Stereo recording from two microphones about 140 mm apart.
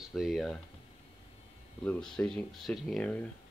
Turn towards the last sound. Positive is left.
turn(degrees=10)  # may be behind; listen again after turning